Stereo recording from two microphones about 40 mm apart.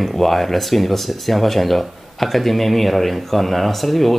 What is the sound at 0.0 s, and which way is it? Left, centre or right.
Speech, centre.